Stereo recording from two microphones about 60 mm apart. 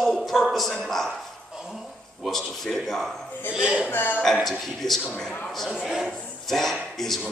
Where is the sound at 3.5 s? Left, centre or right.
Centre.